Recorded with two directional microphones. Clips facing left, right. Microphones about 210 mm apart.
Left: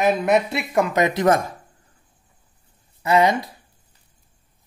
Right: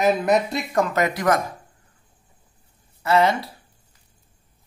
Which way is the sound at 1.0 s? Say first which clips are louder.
Left 5 dB; 25° left (ahead or behind).